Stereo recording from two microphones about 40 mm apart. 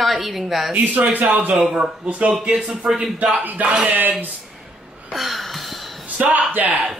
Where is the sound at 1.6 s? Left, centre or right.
Centre.